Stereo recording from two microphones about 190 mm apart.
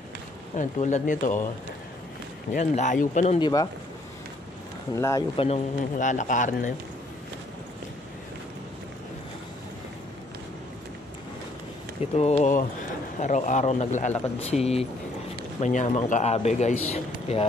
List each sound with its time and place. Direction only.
0.6 s speech: 40° left (ahead or behind)
2.5 s speech: 40° left (ahead or behind)
3.3 s speech: 20° left (ahead or behind)
4.9 s speech: 15° left (ahead or behind)
5.3 s speech: 30° left (ahead or behind)
12.0 s a man's voice: 35° left (ahead or behind)